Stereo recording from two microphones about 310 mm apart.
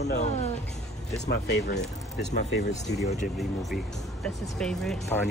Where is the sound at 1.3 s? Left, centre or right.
Left.